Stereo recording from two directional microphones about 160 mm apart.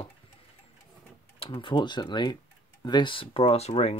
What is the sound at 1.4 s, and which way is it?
Speech, 30° left (ahead or behind).